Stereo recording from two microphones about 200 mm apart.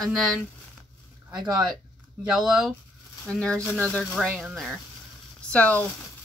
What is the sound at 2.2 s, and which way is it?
Speech, 5° right (ahead or behind).